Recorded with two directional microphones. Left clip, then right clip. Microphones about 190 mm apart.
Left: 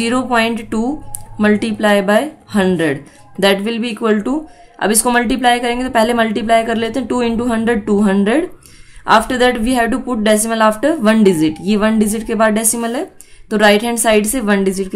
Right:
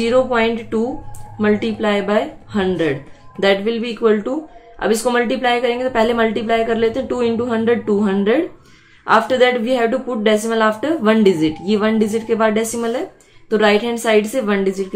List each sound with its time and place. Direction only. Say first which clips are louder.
0.0 s a woman's voice: even; 50° left (ahead or behind)